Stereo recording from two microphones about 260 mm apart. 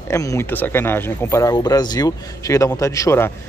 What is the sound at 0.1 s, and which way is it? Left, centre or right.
Speech, centre.